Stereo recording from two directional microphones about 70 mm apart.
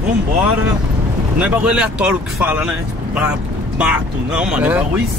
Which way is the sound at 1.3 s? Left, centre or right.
Centre.